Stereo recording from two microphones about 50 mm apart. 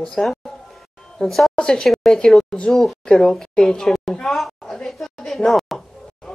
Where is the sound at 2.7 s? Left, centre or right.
Centre.